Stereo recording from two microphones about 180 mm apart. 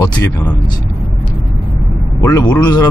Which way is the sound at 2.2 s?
15° left (ahead or behind).